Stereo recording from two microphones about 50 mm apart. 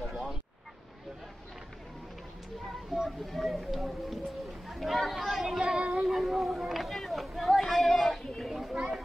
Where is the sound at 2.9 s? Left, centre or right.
Centre.